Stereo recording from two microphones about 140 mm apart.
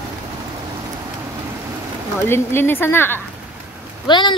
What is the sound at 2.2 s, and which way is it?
Speech, 15° left (ahead or behind).